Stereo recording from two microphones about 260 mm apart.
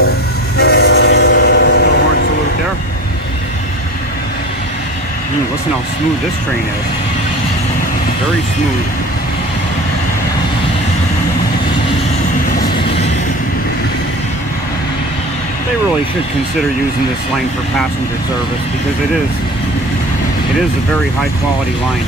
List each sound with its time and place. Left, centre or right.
0.6 s train: left